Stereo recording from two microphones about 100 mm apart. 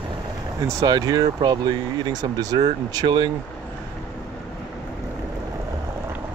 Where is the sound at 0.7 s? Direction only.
40° right (ahead or behind).